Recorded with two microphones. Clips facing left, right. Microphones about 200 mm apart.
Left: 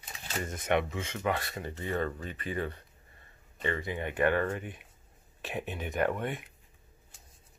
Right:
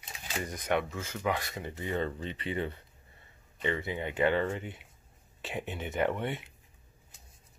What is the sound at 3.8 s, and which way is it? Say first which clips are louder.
Speech: left 1 dB; 20° right (ahead or behind).